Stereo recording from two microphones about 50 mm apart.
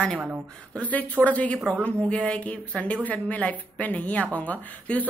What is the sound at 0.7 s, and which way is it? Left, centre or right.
A woman's voice, left.